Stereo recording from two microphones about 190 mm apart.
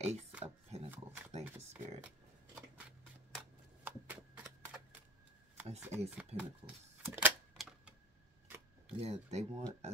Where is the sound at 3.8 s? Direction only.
10° right (ahead or behind).